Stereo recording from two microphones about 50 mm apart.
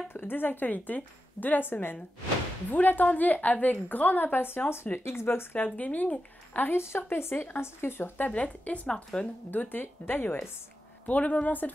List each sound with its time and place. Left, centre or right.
0.1 s a woman's voice: left
5.6 s a woman's voice: left
6.8 s speech: left
8.3 s speech: left
9.5 s a woman's voice: left
11.1 s a woman's voice: left